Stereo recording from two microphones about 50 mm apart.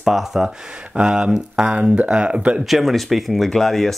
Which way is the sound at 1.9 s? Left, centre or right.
Right.